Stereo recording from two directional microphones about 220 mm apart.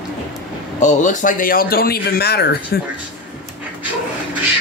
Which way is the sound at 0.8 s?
35° left (ahead or behind).